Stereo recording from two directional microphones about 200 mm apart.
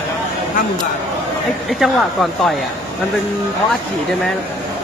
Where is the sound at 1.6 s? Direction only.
Centre (ahead or behind).